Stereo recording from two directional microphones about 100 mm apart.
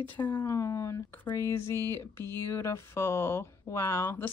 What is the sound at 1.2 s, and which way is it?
Speech, 25° left (ahead or behind).